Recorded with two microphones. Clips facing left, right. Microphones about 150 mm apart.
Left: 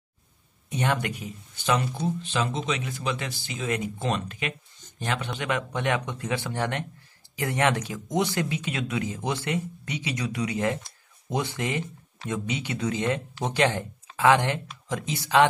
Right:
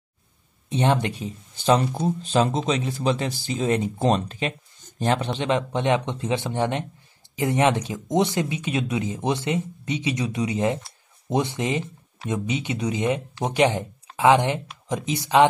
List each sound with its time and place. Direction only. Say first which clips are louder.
0.7 s speech: right 5 dB; 25° right (ahead or behind)